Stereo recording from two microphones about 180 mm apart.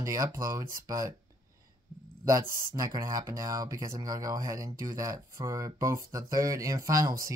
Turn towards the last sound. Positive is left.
turn(degrees=-20)  # may be behind; listen again after turning